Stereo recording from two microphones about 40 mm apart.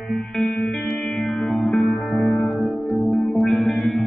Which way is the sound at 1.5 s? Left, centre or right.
Centre.